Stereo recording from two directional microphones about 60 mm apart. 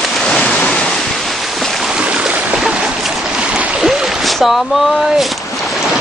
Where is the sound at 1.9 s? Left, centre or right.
Centre.